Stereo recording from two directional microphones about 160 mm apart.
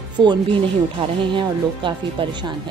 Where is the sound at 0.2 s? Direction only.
30° right (ahead or behind).